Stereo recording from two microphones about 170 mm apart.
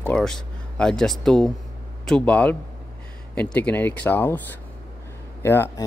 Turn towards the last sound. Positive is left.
turn(degrees=15)  # may be behind; listen again after turning